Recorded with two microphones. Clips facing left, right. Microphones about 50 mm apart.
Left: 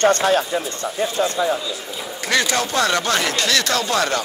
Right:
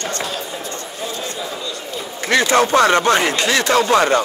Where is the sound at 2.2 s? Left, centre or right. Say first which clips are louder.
Right 5 dB; right.